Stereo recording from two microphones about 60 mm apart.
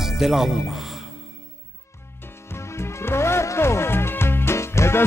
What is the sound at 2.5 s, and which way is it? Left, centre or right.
Music, left.